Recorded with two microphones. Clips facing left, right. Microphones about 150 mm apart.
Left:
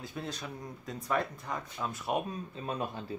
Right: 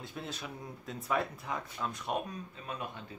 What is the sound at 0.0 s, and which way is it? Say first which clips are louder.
Speech: left 2 dB; centre (ahead or behind).